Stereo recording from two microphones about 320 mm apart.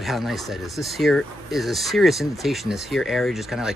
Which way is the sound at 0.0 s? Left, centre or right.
Centre.